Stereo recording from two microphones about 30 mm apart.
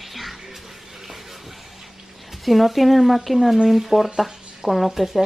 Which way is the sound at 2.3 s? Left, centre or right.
Centre.